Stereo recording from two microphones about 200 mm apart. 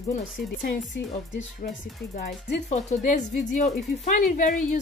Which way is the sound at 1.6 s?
50° left (ahead or behind).